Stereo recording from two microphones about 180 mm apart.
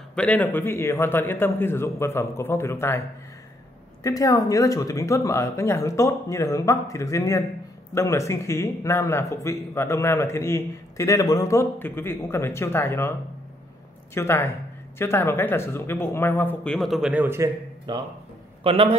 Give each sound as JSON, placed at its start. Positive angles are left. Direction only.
{"t": 0.1, "sound": "a man's voice", "side_deg": 5}
{"t": 4.0, "sound": "a man's voice", "side_deg": 20}
{"t": 14.1, "sound": "a man's voice", "side_deg": 15}
{"t": 17.9, "sound": "a man's voice", "side_deg": -25}